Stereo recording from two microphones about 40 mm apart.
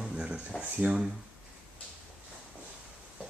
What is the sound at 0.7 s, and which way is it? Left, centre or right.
Speech, right.